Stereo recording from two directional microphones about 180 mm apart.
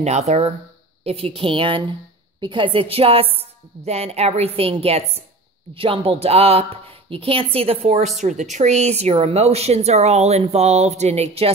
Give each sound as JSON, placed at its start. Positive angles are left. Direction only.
{"t": 0.0, "sound": "a woman's voice", "side_deg": -40}